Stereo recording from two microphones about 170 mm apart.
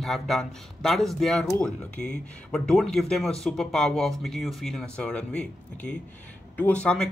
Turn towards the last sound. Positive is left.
turn(degrees=5)  # may be behind; listen again after turning